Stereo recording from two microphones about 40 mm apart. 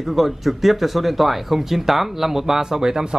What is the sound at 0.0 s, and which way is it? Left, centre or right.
Speech, centre.